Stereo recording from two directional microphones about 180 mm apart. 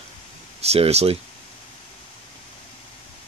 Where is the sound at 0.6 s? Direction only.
35° right (ahead or behind).